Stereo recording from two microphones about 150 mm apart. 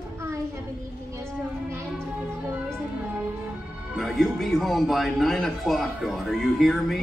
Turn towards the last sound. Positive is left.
turn(degrees=0)  # may be behind; listen again after turning